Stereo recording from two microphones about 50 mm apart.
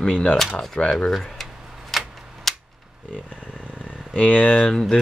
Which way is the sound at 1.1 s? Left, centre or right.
Centre.